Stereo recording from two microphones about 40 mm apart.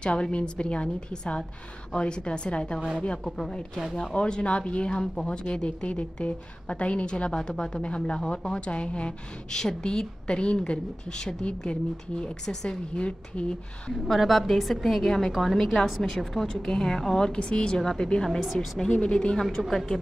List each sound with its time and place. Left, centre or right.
0.0 s a woman's voice: left
4.1 s a woman's voice: left
9.6 s a woman's voice: centre
14.0 s a woman's voice: centre
16.4 s a woman's voice: centre
18.4 s a woman's voice: centre
18.8 s a woman's voice: centre